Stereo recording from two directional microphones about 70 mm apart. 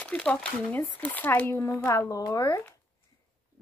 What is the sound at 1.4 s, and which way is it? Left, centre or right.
Speech, left.